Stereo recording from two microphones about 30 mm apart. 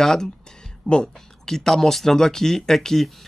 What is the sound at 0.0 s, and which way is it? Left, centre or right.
Speech, centre.